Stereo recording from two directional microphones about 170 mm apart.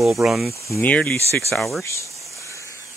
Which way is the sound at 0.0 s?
5° right (ahead or behind).